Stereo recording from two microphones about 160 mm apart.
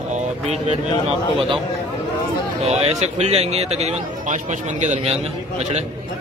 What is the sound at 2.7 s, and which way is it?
Speech, 45° right (ahead or behind).